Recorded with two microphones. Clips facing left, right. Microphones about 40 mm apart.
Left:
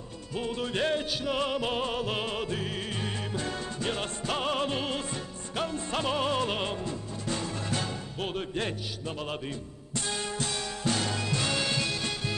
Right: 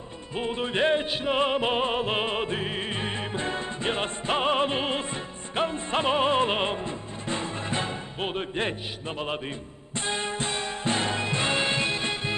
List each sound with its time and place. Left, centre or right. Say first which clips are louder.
0.3 s music: right 3 dB; right
9.9 s music: right 3 dB; right